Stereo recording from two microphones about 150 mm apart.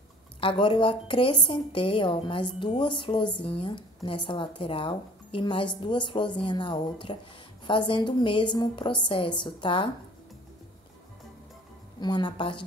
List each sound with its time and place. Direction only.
0.4 s speech: 35° left (ahead or behind)
12.0 s speech: 30° left (ahead or behind)